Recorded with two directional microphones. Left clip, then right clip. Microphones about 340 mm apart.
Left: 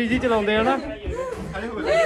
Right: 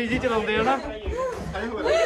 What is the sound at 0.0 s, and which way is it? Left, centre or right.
Speech, centre.